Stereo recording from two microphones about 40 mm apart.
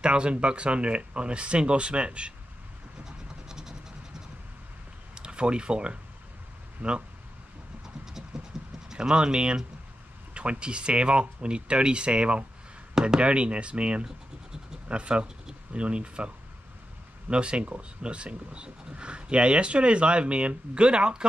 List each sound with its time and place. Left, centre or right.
0.0 s speech: right
3.1 s scratch: centre
5.1 s speech: right
6.8 s speech: right
7.8 s train: centre
8.9 s speech: right
14.0 s scratch: centre
14.9 s speech: right
17.3 s speech: right